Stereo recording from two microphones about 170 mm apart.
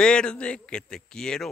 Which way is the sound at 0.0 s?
5° left (ahead or behind).